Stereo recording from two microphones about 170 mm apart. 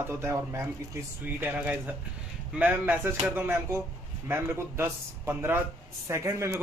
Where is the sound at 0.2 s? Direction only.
15° right (ahead or behind).